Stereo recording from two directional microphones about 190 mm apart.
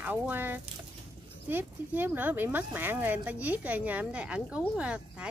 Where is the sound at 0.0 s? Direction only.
10° right (ahead or behind).